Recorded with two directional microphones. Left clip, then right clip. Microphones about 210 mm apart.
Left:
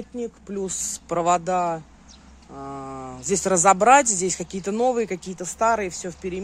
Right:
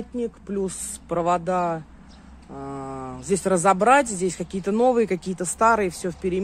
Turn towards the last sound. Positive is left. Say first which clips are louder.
# right 4 dB
turn(degrees=-5)  # may be behind; listen again after turning